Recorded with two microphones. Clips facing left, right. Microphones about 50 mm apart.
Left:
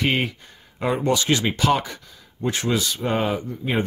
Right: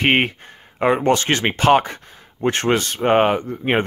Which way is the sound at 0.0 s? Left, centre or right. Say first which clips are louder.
Right 5 dB; right.